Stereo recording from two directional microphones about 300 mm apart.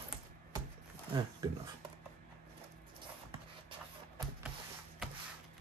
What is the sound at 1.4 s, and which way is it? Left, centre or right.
Speech, centre.